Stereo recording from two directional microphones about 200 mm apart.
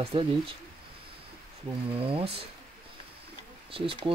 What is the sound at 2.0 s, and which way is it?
Speech, 30° right (ahead or behind).